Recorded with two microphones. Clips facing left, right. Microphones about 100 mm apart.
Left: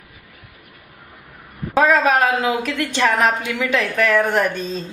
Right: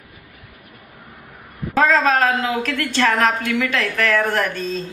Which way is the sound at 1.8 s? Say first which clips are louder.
Left 1 dB; 15° left (ahead or behind).